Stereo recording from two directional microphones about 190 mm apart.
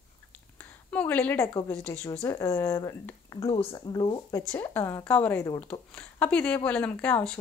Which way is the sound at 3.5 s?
25° left (ahead or behind).